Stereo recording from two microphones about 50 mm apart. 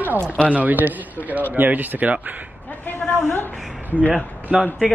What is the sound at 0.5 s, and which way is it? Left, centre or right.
Speech, right.